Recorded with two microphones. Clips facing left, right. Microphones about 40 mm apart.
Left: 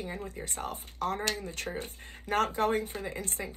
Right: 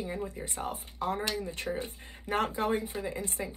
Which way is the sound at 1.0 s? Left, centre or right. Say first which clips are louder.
Even; right.